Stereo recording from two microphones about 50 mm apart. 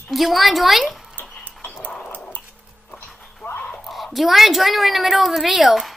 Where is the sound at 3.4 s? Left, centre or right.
Left.